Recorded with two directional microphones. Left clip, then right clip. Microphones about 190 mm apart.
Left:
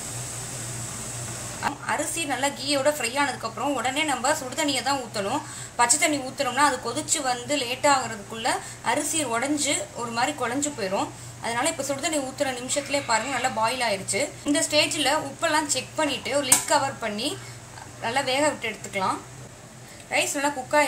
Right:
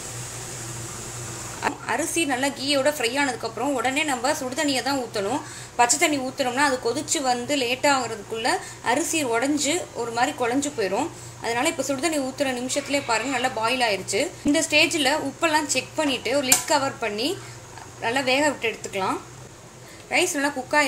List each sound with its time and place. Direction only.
1.6 s a sound: 25° right (ahead or behind)
2.6 s a woman's voice: 25° right (ahead or behind)
20.1 s a woman's voice: 25° right (ahead or behind)